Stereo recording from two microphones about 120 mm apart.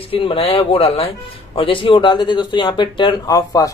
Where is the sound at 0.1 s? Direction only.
50° left (ahead or behind).